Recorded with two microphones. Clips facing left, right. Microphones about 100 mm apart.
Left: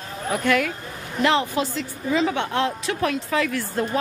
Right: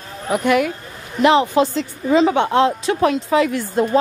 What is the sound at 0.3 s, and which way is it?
A woman's voice, 15° right (ahead or behind).